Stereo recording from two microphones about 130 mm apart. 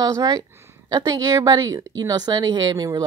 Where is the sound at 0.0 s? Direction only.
25° right (ahead or behind).